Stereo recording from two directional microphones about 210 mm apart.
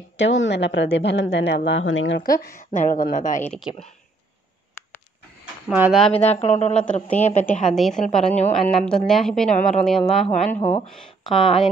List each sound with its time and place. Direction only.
0.2 s a woman's voice: 60° left (ahead or behind); by 3.5 s 35° left (ahead or behind)
3.5 s speech: centre (ahead or behind)
5.4 s speech: 5° right (ahead or behind)
6.1 s speech: 30° left (ahead or behind)
6.8 s speech: 5° left (ahead or behind)
7.2 s speech: 35° left (ahead or behind)
7.7 s speech: centre (ahead or behind)
8.3 s speech: 35° left (ahead or behind)
8.6 s speech: 5° left (ahead or behind)
10.2 s speech: 30° left (ahead or behind)
10.9 s speech: centre (ahead or behind)